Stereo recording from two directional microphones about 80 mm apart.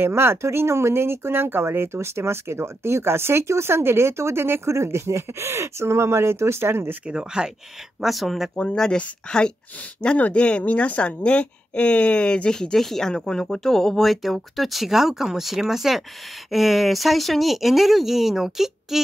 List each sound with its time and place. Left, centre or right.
0.0 s speech: right
7.1 s speech: centre